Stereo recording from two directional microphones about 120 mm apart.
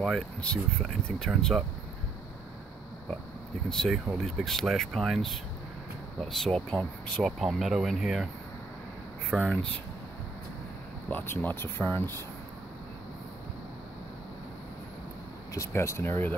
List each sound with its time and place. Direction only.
0.0 s speech: 5° left (ahead or behind)
3.7 s speech: centre (ahead or behind)
7.3 s speech: centre (ahead or behind)
9.3 s speech: 5° left (ahead or behind)
11.1 s speech: 15° left (ahead or behind)
15.5 s speech: 25° left (ahead or behind)